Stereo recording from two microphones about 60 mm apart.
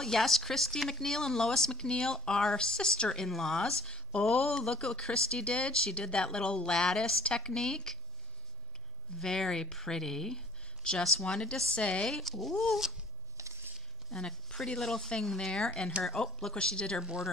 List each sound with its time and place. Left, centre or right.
0.0 s speech: centre
9.2 s speech: centre
13.4 s a sound: right
14.1 s speech: centre